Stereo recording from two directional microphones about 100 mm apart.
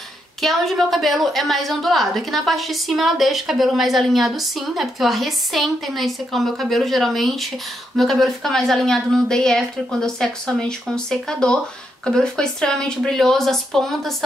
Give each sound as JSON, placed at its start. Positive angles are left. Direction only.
{"t": 0.4, "sound": "a woman's voice", "side_deg": 0}